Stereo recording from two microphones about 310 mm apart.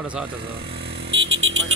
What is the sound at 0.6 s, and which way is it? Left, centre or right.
Vehicle, right.